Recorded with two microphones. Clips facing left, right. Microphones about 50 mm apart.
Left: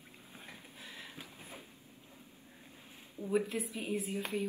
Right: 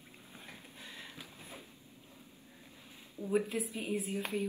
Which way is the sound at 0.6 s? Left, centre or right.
Centre.